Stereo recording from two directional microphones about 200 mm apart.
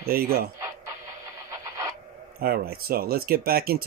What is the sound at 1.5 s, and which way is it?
Radio, 15° right (ahead or behind).